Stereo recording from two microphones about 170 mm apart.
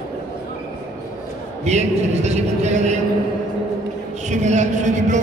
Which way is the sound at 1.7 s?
40° right (ahead or behind).